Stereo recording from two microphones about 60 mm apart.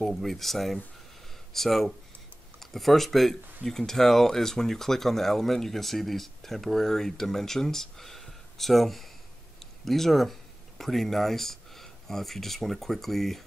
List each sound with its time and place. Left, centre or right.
0.0 s speech: centre